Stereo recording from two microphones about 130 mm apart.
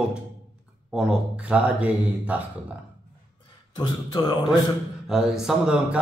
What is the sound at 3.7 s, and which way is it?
Speech, 35° left (ahead or behind).